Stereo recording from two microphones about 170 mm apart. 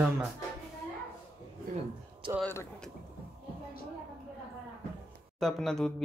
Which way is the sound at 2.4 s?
10° left (ahead or behind).